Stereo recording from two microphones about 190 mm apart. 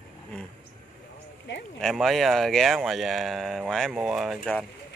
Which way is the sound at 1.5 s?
75° left (ahead or behind).